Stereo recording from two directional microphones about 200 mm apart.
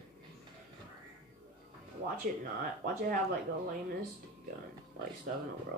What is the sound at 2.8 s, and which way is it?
Speech, 45° right (ahead or behind).